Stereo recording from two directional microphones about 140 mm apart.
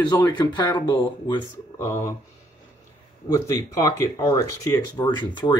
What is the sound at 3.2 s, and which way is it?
Speech, 20° left (ahead or behind).